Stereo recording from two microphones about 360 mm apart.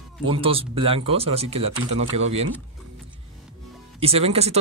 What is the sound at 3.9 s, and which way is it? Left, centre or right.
Speech, centre.